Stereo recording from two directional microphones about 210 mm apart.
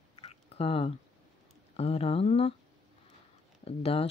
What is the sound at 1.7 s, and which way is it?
Speech, 30° left (ahead or behind).